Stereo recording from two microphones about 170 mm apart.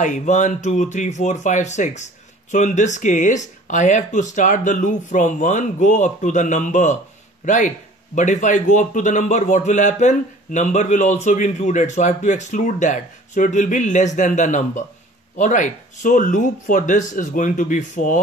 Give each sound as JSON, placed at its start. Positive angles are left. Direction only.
{"t": 0.0, "sound": "speech", "side_deg": 45}